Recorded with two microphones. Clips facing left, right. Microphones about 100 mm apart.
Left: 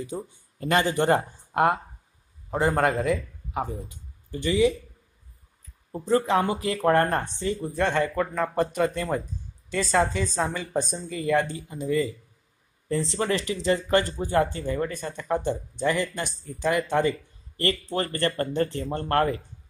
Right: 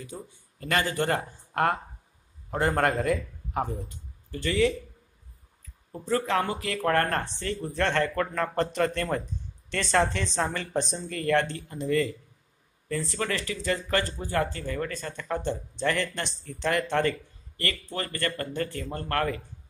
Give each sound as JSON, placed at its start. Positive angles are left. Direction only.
{"t": 0.0, "sound": "speech", "side_deg": 25}
{"t": 2.5, "sound": "a man's voice", "side_deg": 5}
{"t": 3.9, "sound": "speech", "side_deg": 15}
{"t": 5.9, "sound": "speech", "side_deg": 20}
{"t": 12.8, "sound": "speech", "side_deg": 25}
{"t": 17.6, "sound": "speech", "side_deg": 30}